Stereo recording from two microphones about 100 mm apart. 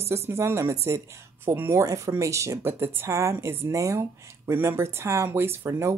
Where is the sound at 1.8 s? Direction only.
30° right (ahead or behind).